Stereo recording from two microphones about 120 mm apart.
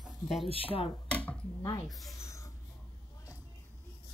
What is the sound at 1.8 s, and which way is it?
Speech, centre (ahead or behind).